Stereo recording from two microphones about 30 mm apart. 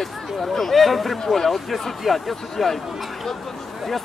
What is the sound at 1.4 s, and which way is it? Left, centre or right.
Speech, centre.